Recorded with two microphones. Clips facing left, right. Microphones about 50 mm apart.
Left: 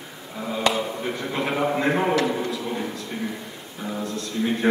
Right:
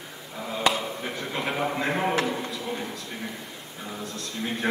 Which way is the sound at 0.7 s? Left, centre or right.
Centre.